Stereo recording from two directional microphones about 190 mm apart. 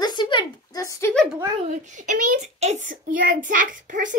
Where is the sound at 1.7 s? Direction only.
40° right (ahead or behind).